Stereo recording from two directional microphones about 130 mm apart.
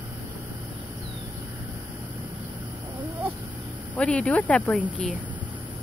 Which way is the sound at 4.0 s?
10° left (ahead or behind).